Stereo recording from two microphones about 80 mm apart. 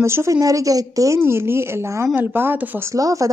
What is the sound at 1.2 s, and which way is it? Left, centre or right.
Speech, right.